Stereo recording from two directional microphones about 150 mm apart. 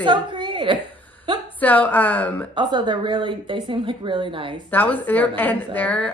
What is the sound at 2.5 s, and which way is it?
A woman's voice, 30° right (ahead or behind).